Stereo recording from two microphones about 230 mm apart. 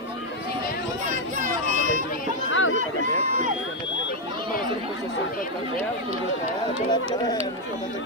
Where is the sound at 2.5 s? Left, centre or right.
Left.